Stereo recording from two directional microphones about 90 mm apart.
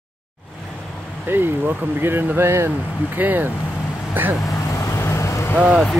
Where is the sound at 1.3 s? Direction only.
25° right (ahead or behind).